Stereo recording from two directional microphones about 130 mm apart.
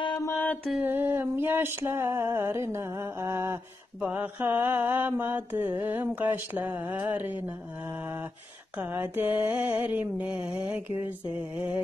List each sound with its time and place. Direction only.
0.2 s mantra: 20° left (ahead or behind)
0.7 s female singing: 15° right (ahead or behind)
4.0 s mantra: 15° right (ahead or behind)